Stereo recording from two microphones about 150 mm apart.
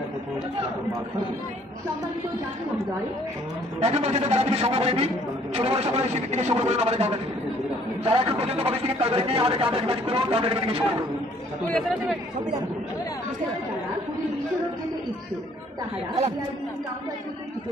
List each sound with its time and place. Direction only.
3.8 s a man's voice: 45° right (ahead or behind)
11.7 s speech: centre (ahead or behind)